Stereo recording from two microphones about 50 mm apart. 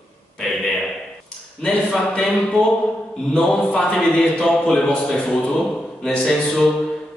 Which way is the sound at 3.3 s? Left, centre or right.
Left.